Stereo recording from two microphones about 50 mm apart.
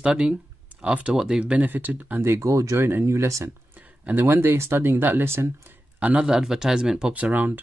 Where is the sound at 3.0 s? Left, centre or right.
Right.